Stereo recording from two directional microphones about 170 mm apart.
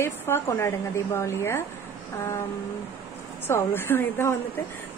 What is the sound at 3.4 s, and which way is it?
Speech, 15° left (ahead or behind).